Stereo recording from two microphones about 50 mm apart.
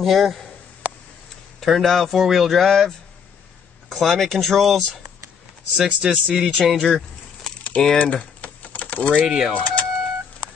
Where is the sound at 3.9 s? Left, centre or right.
Centre.